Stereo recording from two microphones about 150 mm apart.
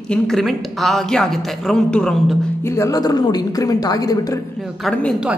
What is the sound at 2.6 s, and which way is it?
A man's voice, 20° left (ahead or behind).